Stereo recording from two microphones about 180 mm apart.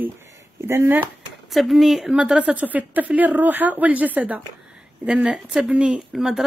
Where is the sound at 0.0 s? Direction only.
15° right (ahead or behind).